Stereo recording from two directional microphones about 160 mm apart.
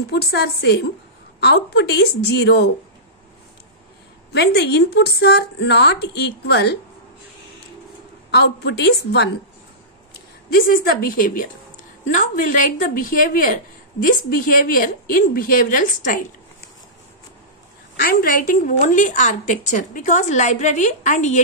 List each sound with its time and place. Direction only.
0.1 s speech: 90° left
4.3 s speech: 85° left
8.3 s speech: 90° left
10.5 s a woman's voice: 65° left (ahead or behind)
17.9 s a woman's voice: 65° left (ahead or behind)